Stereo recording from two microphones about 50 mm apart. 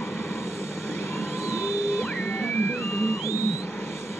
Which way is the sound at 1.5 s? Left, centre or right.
Left.